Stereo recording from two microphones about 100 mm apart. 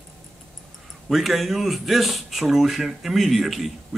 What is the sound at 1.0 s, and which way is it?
Speech, centre (ahead or behind).